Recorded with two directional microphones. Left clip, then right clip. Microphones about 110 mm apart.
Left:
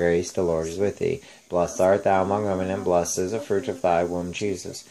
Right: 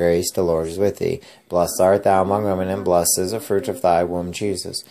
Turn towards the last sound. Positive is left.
turn(degrees=-20)  # may be behind; listen again after turning